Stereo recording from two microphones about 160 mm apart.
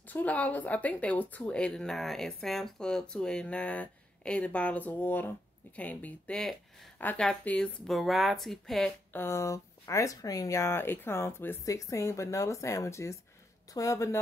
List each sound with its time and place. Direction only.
0.1 s speech: 10° left (ahead or behind)
9.1 s speech: 15° left (ahead or behind)